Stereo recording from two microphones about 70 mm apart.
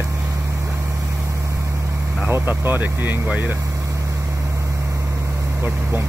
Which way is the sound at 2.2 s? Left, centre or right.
Right.